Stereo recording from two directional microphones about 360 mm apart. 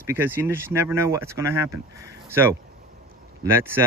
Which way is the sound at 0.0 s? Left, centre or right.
Centre.